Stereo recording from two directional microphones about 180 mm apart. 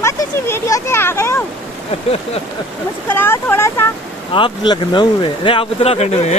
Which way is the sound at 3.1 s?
10° left (ahead or behind).